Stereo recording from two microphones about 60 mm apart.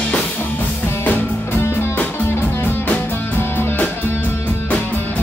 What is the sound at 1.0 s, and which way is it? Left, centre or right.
Music, left.